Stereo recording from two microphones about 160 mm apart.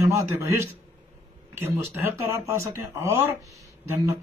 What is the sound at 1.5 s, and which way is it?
Speech, 15° right (ahead or behind).